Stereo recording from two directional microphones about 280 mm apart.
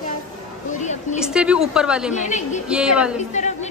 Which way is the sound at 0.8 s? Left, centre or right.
Left.